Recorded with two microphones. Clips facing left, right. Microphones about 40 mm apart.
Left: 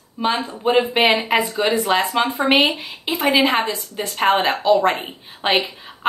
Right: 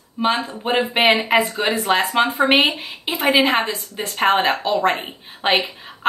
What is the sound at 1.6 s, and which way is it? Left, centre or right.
Speech, centre.